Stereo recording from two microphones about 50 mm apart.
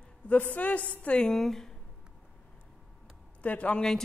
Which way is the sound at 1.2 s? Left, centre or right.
Centre.